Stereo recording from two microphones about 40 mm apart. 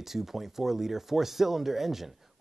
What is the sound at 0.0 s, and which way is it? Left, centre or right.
Speech, centre.